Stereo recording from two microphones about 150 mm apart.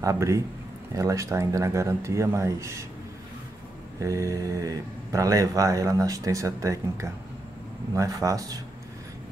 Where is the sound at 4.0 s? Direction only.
20° right (ahead or behind).